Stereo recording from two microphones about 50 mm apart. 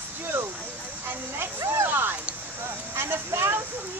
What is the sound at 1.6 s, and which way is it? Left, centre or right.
Speech, right.